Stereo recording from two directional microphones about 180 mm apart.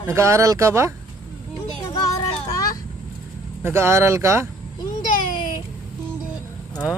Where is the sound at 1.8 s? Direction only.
20° left (ahead or behind).